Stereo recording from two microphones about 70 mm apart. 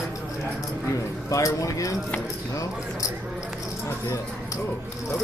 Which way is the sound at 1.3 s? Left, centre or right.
Left.